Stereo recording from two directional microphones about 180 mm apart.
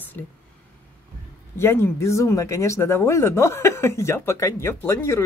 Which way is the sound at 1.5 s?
15° left (ahead or behind).